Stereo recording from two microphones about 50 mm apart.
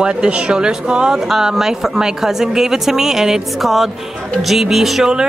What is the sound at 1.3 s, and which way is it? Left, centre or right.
A woman's voice, centre.